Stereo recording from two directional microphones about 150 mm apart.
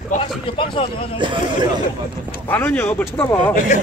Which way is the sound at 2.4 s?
15° left (ahead or behind).